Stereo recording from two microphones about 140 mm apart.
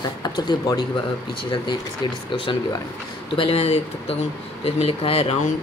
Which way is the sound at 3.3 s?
45° left (ahead or behind).